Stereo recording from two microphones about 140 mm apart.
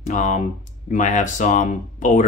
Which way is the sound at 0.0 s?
60° left (ahead or behind).